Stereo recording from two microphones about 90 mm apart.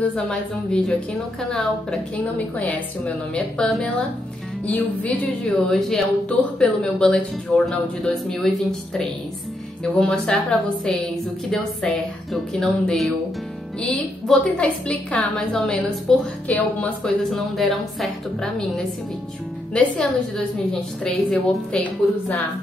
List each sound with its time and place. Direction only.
0.0 s speech: 10° left (ahead or behind)
4.6 s speech: 15° left (ahead or behind)
9.9 s speech: 10° left (ahead or behind)
11.5 s speech: 5° left (ahead or behind)
16.4 s speech: 15° left (ahead or behind)
17.3 s speech: centre (ahead or behind)